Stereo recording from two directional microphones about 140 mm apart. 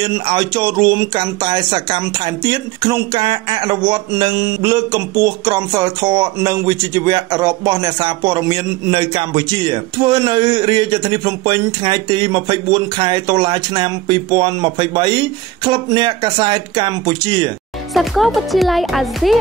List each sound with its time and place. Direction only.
0.3 s speech: 35° right (ahead or behind)
17.9 s speech: centre (ahead or behind)